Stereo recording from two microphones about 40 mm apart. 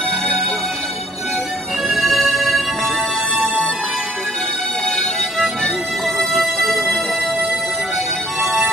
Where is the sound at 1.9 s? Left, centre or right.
Centre.